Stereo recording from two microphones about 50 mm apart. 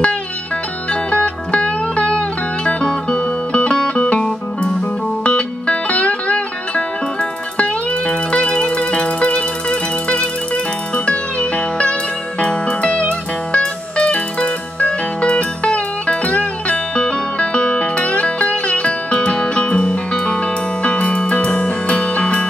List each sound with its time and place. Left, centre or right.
1.1 s music: left
4.2 s music: centre